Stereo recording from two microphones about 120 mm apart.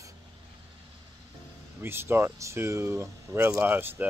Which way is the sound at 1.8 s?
20° right (ahead or behind).